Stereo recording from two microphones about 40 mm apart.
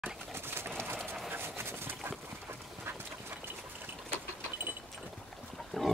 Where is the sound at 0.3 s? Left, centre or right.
Right.